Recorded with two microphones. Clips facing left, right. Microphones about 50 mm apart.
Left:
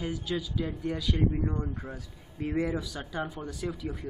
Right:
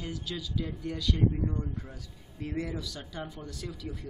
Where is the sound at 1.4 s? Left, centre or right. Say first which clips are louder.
Left 2 dB; left.